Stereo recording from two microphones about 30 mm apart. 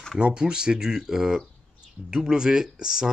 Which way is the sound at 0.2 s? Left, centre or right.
Right.